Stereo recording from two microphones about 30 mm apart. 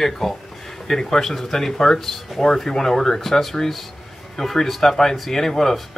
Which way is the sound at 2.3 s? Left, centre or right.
Centre.